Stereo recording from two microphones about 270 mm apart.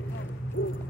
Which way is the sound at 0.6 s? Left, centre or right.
Left.